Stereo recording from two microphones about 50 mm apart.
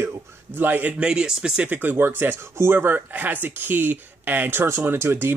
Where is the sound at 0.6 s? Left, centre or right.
Right.